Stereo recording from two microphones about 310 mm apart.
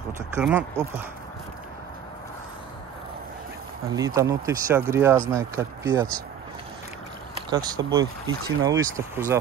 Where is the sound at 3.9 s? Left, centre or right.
Centre.